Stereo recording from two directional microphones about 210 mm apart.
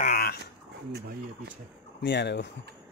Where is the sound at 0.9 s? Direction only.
50° right (ahead or behind).